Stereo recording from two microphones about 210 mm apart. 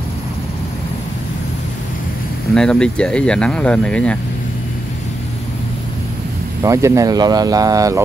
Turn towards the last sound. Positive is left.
turn(degrees=-15)  # may be behind; listen again after turning